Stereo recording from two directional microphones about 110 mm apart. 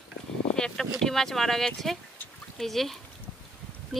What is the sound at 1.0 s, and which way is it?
Speech, 5° left (ahead or behind).